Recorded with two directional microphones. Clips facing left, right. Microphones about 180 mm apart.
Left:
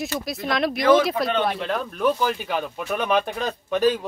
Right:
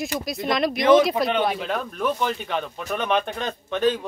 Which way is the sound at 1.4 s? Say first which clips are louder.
Even; centre (ahead or behind).